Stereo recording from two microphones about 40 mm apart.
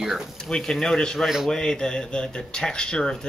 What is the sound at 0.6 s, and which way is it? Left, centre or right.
Speech, centre.